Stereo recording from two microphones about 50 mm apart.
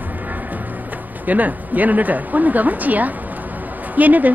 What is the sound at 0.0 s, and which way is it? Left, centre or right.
Music, right.